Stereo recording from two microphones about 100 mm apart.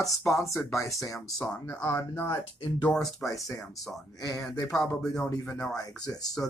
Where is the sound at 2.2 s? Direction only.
45° left (ahead or behind).